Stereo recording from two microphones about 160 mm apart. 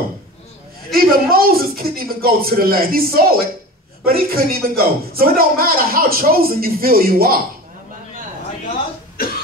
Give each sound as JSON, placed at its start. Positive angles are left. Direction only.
{"t": 0.9, "sound": "a man's voice", "side_deg": -65}
{"t": 9.2, "sound": "cough", "side_deg": 65}